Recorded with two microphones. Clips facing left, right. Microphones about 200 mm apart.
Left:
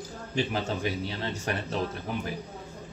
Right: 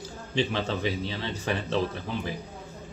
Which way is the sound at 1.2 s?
45° left (ahead or behind).